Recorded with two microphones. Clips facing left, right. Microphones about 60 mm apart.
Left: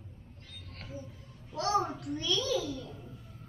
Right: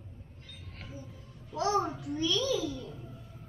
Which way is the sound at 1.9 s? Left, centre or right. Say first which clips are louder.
Right 2 dB; centre.